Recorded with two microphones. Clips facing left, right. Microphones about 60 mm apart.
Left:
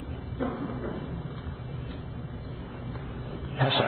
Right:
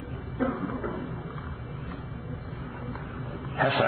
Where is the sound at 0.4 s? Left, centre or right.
Right.